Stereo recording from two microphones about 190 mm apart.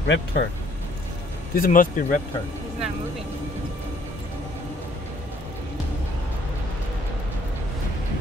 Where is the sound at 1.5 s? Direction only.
45° left (ahead or behind).